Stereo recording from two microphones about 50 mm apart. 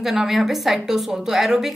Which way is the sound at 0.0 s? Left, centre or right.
Centre.